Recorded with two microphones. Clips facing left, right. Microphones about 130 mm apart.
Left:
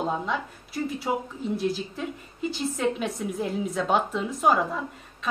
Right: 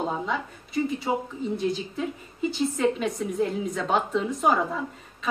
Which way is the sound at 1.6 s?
5° left (ahead or behind).